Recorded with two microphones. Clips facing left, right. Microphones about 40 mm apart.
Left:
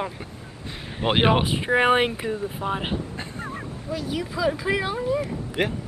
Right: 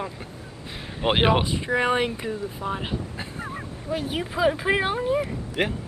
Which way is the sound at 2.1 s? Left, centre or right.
Centre.